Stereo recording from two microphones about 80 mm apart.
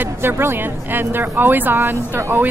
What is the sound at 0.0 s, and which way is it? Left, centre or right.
A woman's voice, right.